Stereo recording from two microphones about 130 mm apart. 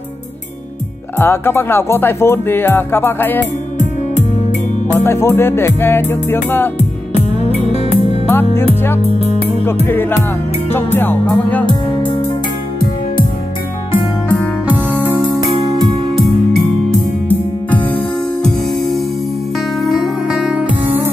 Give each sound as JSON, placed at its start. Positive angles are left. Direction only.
{"t": 1.1, "sound": "music", "side_deg": 20}
{"t": 5.0, "sound": "music", "side_deg": 20}
{"t": 7.7, "sound": "music", "side_deg": 55}
{"t": 9.8, "sound": "music", "side_deg": 15}
{"t": 14.7, "sound": "music", "side_deg": -15}
{"t": 15.6, "sound": "music", "side_deg": -35}
{"t": 17.3, "sound": "music", "side_deg": 15}
{"t": 19.9, "sound": "music", "side_deg": -5}